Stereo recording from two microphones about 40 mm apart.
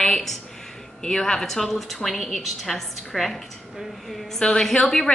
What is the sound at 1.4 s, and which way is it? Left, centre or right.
A woman's voice, centre.